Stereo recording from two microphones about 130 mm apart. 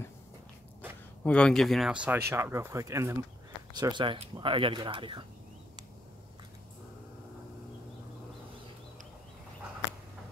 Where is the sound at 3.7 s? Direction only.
35° right (ahead or behind).